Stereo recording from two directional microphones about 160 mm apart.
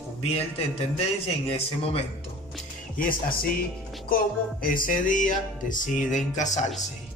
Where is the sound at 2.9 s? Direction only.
60° left (ahead or behind).